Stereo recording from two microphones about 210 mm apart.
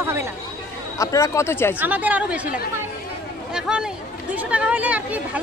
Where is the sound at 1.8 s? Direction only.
5° right (ahead or behind).